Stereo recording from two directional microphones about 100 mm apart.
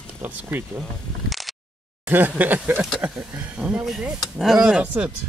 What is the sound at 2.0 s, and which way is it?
Speech, 20° right (ahead or behind).